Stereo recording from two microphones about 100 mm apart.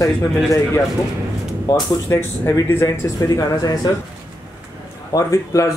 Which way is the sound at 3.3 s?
40° left (ahead or behind).